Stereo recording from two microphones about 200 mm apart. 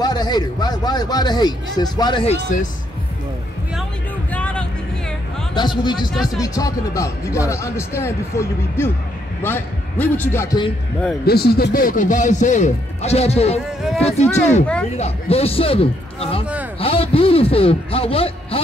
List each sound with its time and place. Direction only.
0.0 s a man's voice: 20° left (ahead or behind)
4.3 s music: 5° left (ahead or behind)
5.5 s a man's voice: 20° left (ahead or behind)
11.2 s a man's voice: 50° left (ahead or behind); by 18.6 s 30° left (ahead or behind)